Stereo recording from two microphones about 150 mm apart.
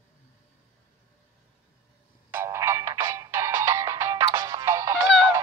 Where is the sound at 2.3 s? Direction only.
15° right (ahead or behind).